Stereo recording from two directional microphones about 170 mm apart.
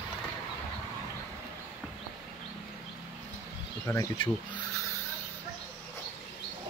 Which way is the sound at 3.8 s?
15° left (ahead or behind).